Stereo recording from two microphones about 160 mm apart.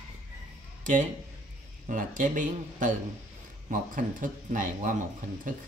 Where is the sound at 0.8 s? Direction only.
50° right (ahead or behind).